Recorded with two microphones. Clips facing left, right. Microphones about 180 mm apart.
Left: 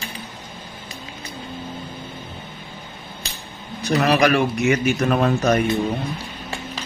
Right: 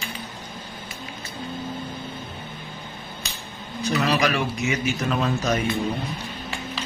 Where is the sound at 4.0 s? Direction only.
60° left (ahead or behind).